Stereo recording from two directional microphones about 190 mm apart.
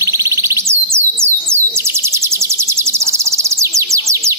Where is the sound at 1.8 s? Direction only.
15° right (ahead or behind).